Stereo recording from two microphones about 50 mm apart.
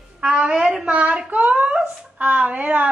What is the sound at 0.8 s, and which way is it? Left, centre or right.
A woman's voice, right.